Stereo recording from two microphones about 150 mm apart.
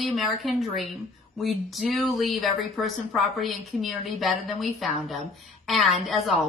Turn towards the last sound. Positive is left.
turn(degrees=0)  # may be behind; listen again after turning